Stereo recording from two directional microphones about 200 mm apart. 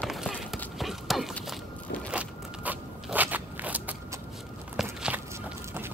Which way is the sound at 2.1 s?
5° right (ahead or behind).